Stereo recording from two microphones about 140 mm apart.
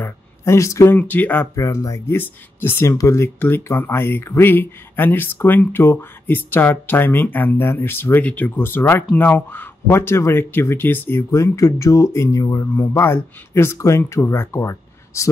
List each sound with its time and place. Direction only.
0.0 s speech: 20° left (ahead or behind)
1.5 s speech: 25° left (ahead or behind)